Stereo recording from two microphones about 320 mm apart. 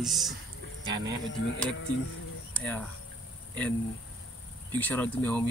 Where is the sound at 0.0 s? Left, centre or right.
Centre.